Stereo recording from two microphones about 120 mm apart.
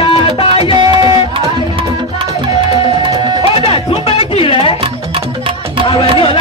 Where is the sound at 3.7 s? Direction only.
50° left (ahead or behind).